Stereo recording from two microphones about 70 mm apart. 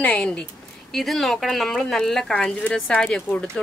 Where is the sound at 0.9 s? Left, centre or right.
Centre.